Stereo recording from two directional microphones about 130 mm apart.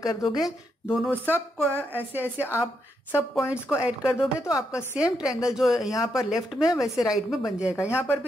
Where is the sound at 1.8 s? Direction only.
15° right (ahead or behind).